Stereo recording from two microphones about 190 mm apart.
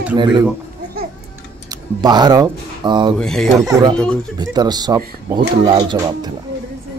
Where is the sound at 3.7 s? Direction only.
20° right (ahead or behind).